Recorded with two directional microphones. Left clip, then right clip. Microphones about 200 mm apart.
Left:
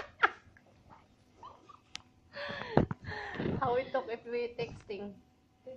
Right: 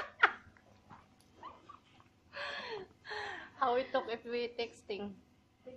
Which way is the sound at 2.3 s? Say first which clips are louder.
Left 8 dB; 15° right (ahead or behind).